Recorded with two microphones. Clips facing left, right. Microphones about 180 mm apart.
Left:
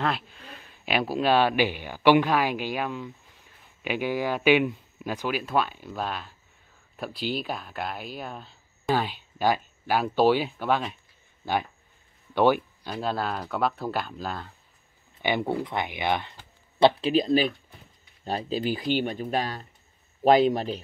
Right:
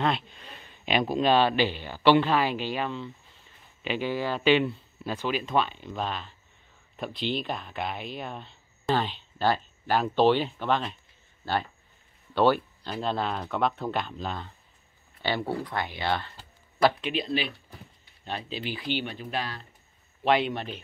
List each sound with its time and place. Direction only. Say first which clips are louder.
0.0 s speech: right 1 dB; centre (ahead or behind)
15.2 s speech: left 3 dB; 20° left (ahead or behind)
16.8 s speech: left 5 dB; 35° left (ahead or behind)